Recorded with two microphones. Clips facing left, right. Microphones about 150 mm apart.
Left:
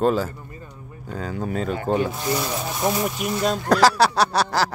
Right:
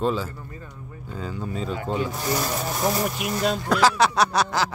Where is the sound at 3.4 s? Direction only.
40° left (ahead or behind).